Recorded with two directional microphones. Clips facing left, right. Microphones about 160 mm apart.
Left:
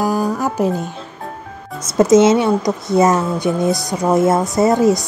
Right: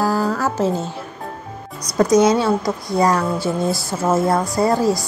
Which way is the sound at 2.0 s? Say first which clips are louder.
Left 3 dB; 25° left (ahead or behind).